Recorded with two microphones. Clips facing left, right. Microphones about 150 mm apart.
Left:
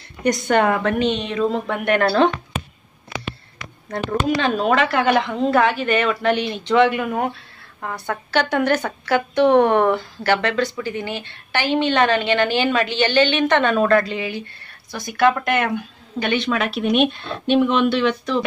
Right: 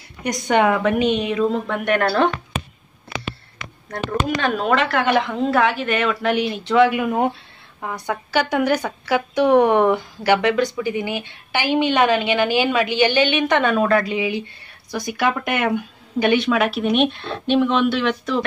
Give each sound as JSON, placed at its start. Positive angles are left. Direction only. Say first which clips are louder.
{"t": 0.2, "sound": "a woman's voice", "louder": "left 1 dB", "side_deg": -15}
{"t": 1.9, "sound": "speech", "louder": "left 2 dB", "side_deg": 25}
{"t": 4.4, "sound": "speech", "louder": "even", "side_deg": 20}
{"t": 4.7, "sound": "a woman's voice", "louder": "left 1 dB", "side_deg": 0}